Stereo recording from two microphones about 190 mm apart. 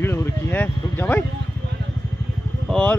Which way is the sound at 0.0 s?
10° left (ahead or behind).